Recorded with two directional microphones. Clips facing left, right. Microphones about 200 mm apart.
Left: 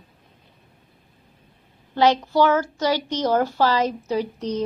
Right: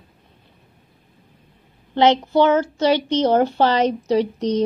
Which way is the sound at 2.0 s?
20° right (ahead or behind).